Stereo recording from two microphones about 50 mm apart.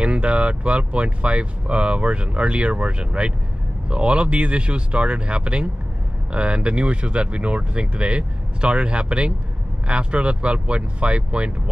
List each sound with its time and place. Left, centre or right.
0.0 s speech: right